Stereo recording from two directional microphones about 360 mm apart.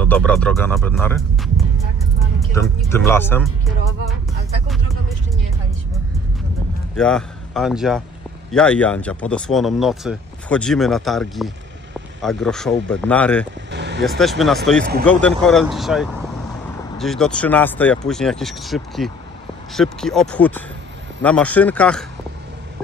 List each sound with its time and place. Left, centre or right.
0.0 s speech: centre
7.0 s a man's voice: centre
13.7 s vehicle: right
14.0 s speech: centre